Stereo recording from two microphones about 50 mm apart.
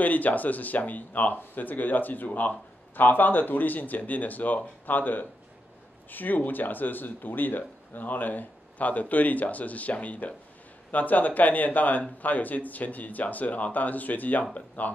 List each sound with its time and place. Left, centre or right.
0.0 s speech: left